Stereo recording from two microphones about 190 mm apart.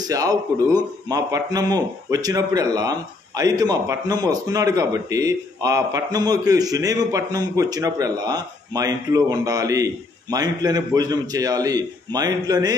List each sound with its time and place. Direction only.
0.0 s speech: 20° right (ahead or behind)